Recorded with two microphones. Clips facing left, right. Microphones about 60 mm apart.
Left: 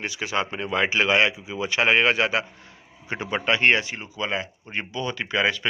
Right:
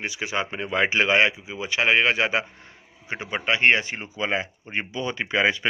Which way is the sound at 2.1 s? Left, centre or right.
Right.